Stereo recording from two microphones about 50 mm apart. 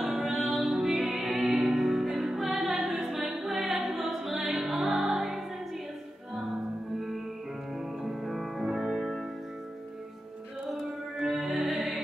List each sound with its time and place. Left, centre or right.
0.0 s music: centre
8.0 s music: centre
10.7 s music: centre
11.7 s music: right